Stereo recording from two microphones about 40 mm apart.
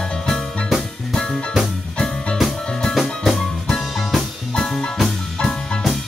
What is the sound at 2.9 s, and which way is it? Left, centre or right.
Music, centre.